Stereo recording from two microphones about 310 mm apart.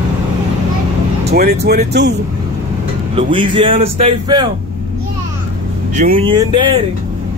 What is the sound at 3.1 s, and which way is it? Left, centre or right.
A man's voice, centre.